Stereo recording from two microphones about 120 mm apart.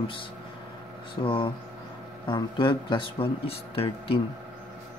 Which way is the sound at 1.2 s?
45° left (ahead or behind).